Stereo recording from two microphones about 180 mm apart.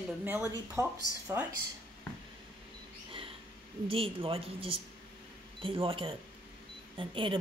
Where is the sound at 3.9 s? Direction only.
30° right (ahead or behind).